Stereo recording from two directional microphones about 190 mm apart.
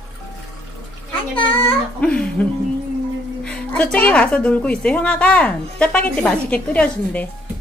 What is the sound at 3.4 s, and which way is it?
A woman's voice, 5° left (ahead or behind).